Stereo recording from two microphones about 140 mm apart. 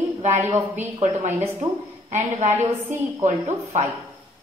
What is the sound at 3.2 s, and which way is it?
Speech, 55° right (ahead or behind).